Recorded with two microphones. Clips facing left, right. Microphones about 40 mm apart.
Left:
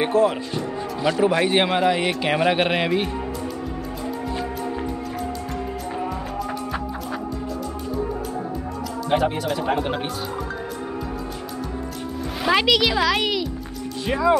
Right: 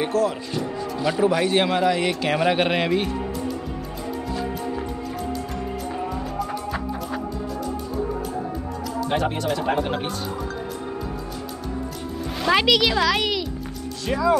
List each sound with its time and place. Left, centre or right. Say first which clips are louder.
0.0 s speech: left 3 dB; left
0.5 s music: even; centre
1.2 s speech: even; centre
9.1 s speech: left 3 dB; centre
12.4 s speech: even; centre
14.0 s speech: left 1 dB; left